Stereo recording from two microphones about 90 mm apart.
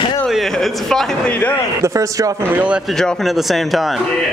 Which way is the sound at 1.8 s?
35° right (ahead or behind).